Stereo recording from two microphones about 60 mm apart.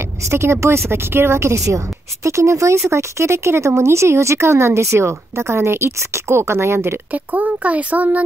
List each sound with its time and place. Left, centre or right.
0.3 s speech: right
7.1 s speech: right